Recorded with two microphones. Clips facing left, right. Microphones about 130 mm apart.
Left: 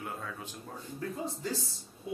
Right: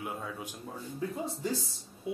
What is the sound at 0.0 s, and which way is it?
Speech, 15° right (ahead or behind).